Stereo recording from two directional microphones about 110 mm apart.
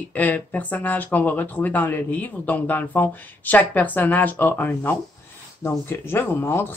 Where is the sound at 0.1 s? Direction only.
15° left (ahead or behind).